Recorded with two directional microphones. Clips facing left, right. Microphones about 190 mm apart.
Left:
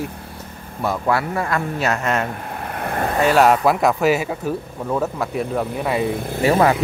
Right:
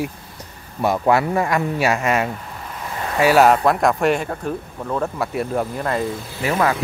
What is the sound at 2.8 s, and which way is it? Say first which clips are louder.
Vehicle: left 6 dB; 60° left (ahead or behind).